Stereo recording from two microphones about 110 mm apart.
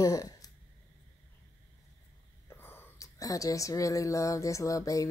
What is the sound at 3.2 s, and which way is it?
Speech, 30° left (ahead or behind).